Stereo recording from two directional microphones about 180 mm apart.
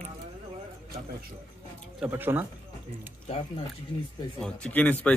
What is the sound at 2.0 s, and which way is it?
Speech, 10° right (ahead or behind).